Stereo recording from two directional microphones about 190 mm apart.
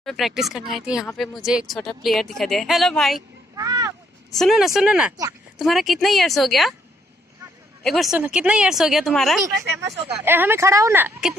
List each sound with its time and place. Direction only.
0.0 s speech: centre (ahead or behind)
3.5 s vehicle: 20° right (ahead or behind)
4.3 s speech: centre (ahead or behind)
7.8 s speech: centre (ahead or behind)
9.5 s speech: 15° right (ahead or behind)